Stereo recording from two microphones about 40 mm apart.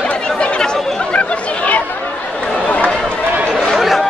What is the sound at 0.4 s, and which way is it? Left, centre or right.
Chatter, left.